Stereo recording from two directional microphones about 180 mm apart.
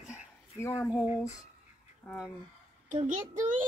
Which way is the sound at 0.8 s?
Centre (ahead or behind).